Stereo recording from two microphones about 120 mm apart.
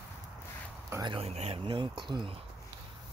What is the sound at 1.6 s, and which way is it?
Speech, 45° right (ahead or behind).